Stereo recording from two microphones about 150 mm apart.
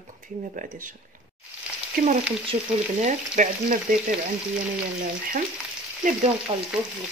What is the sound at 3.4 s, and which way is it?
Speech, 60° right (ahead or behind).